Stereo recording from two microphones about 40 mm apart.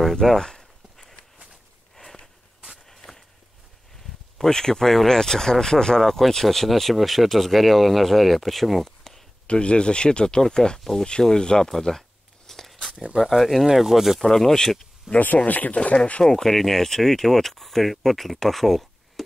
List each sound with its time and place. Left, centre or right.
0.0 s speech: centre
2.0 s walk: left
4.4 s speech: centre
8.8 s a sound: centre
9.5 s speech: left
10.8 s speech: centre
11.1 s speech: centre
12.4 s a sound: centre
13.2 s speech: centre
14.2 s speech: centre
15.1 s speech: left
16.3 s speech: centre